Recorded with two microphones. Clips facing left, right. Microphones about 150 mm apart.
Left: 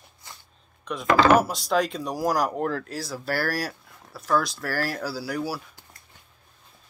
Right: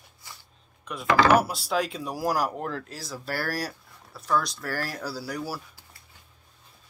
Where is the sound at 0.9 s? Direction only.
5° right (ahead or behind).